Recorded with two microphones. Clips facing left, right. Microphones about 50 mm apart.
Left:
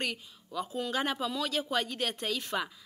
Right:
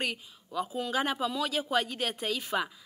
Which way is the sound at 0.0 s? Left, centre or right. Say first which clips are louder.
Right 1 dB; centre.